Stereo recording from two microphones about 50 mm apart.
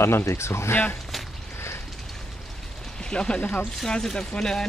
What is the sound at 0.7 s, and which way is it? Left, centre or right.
Speech, left.